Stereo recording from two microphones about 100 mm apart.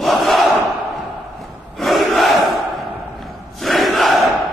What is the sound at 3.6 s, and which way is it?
Crowd, centre (ahead or behind).